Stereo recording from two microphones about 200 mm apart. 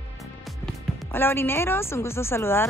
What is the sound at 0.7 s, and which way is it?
Speech, 10° left (ahead or behind).